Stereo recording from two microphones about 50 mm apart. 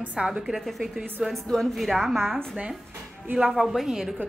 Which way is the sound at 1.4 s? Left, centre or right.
Centre.